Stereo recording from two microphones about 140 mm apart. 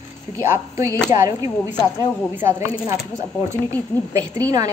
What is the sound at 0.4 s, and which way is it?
Speech, 20° right (ahead or behind).